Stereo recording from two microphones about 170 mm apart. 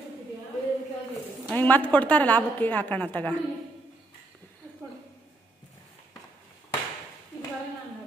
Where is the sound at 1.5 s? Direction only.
10° left (ahead or behind).